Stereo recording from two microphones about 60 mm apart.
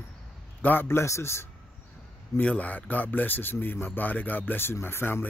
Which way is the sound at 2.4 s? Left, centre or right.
Left.